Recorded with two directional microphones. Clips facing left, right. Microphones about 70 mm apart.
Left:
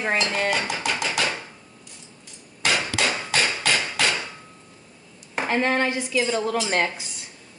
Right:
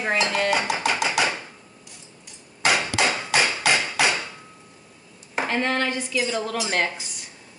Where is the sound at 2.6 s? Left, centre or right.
Centre.